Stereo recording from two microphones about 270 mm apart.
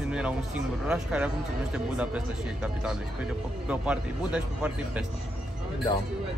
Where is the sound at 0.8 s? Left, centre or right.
Centre.